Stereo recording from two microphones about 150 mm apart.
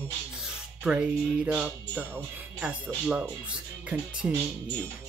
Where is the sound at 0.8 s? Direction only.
10° right (ahead or behind).